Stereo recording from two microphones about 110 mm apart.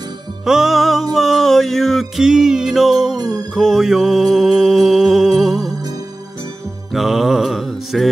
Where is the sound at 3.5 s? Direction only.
Centre (ahead or behind).